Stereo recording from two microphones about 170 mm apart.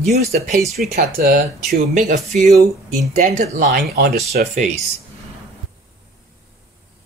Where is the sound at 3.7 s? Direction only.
65° right (ahead or behind).